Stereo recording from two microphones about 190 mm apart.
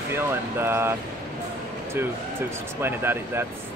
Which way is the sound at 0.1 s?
10° right (ahead or behind).